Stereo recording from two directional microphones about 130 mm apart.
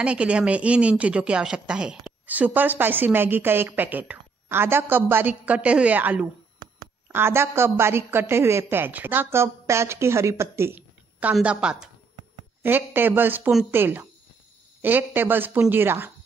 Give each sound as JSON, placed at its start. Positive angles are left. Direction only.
{"t": 0.0, "sound": "a woman's voice", "side_deg": -10}